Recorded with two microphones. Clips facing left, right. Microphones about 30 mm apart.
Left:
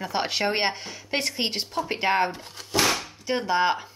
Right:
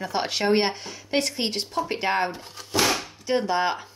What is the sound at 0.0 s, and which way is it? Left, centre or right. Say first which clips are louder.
Speech: even; centre.